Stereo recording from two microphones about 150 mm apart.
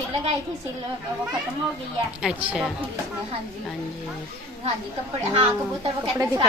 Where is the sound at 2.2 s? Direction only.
5° right (ahead or behind).